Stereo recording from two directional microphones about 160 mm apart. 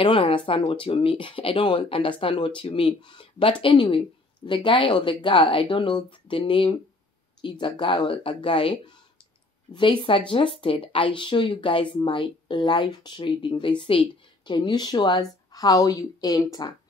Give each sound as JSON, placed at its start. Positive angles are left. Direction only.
{"t": 0.0, "sound": "speech", "side_deg": 35}